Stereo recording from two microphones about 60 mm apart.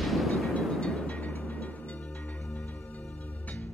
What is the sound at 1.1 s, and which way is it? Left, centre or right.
Music, left.